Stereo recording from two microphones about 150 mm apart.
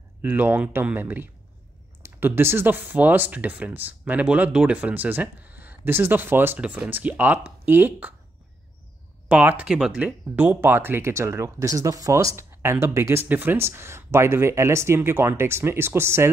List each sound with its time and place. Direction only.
0.2 s speech: 15° right (ahead or behind)
9.3 s speech: 10° right (ahead or behind)